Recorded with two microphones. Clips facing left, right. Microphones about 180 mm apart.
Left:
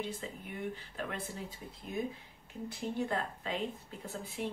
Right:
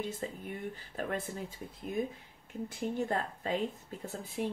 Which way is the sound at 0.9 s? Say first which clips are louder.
Right 4 dB; 45° right (ahead or behind).